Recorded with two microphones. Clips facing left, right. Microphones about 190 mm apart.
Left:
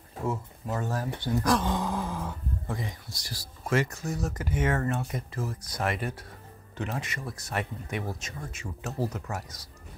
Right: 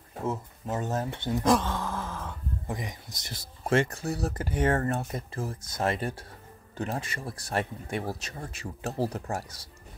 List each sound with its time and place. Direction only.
0.2 s speech: 20° right (ahead or behind)
1.6 s groan: 15° left (ahead or behind)
2.7 s speech: 20° right (ahead or behind)